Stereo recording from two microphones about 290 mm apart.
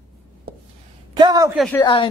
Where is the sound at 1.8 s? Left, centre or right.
Centre.